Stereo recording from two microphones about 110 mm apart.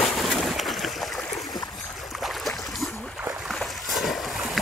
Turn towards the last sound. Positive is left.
turn(degrees=0)  # may be behind; listen again after turning